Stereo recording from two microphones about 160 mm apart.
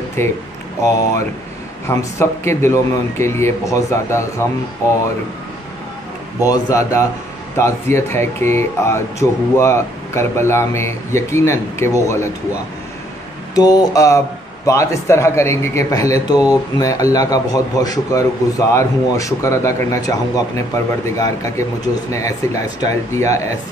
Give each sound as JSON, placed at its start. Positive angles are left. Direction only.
{"t": 0.2, "sound": "speech", "side_deg": 15}
{"t": 1.9, "sound": "speech", "side_deg": 15}
{"t": 6.4, "sound": "speech", "side_deg": 20}
{"t": 13.6, "sound": "speech", "side_deg": 25}